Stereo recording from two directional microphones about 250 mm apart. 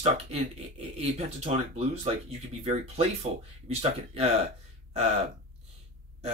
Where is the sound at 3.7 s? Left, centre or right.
Right.